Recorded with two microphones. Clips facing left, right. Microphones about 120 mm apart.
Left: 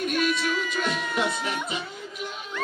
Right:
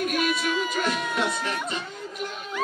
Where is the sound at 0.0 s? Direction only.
5° right (ahead or behind).